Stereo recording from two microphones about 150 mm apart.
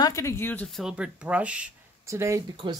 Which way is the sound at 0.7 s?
Centre (ahead or behind).